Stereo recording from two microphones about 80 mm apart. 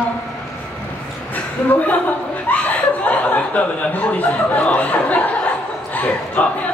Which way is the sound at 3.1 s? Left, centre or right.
Centre.